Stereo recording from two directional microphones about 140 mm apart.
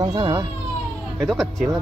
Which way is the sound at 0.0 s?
30° right (ahead or behind).